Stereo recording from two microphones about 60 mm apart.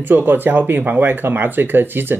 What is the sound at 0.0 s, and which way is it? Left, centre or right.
Speech, right.